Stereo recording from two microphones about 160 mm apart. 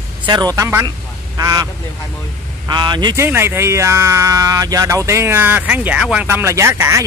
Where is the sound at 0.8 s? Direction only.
25° right (ahead or behind).